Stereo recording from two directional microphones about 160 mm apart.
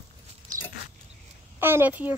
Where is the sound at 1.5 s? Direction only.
15° right (ahead or behind).